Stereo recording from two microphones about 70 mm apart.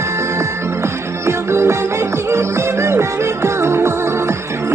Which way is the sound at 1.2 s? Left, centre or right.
Right.